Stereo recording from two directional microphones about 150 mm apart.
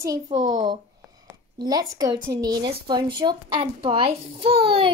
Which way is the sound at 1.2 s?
25° right (ahead or behind).